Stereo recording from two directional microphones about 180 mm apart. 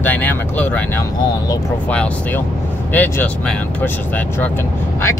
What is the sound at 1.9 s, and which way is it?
Speech, 5° left (ahead or behind).